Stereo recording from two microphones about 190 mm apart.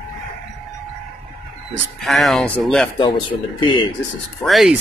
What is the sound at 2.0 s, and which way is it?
Speech, centre (ahead or behind).